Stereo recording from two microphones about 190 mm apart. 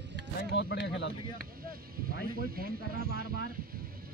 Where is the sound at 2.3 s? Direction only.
50° right (ahead or behind).